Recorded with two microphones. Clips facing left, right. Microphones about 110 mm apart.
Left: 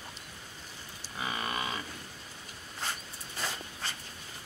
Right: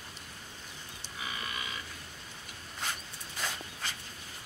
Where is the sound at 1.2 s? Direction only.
45° left (ahead or behind).